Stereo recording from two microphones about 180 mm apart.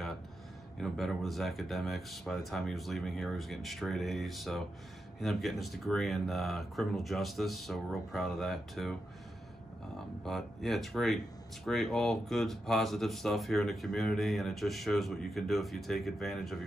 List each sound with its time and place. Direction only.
0.7 s speech: centre (ahead or behind)
10.2 s speech: centre (ahead or behind)